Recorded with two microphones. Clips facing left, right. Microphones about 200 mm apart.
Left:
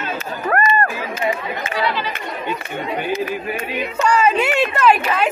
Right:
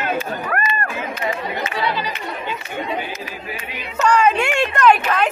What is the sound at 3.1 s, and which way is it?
Speech, 55° left (ahead or behind).